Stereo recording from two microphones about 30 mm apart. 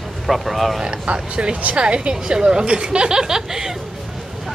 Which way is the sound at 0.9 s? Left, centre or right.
Right.